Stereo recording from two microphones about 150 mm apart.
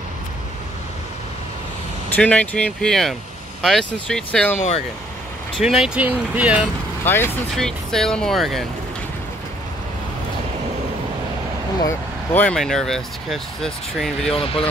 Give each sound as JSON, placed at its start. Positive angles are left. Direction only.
{"t": 2.0, "sound": "speech", "side_deg": 10}
{"t": 4.6, "sound": "speech", "side_deg": 45}
{"t": 5.6, "sound": "speech", "side_deg": -5}
{"t": 7.1, "sound": "speech", "side_deg": 15}
{"t": 7.5, "sound": "speech", "side_deg": 5}
{"t": 12.4, "sound": "speech", "side_deg": 5}
{"t": 14.3, "sound": "speech", "side_deg": 40}